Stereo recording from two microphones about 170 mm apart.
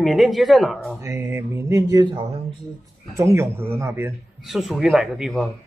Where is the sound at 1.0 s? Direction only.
15° right (ahead or behind).